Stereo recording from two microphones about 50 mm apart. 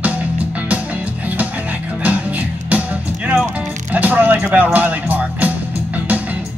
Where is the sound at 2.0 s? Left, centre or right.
Right.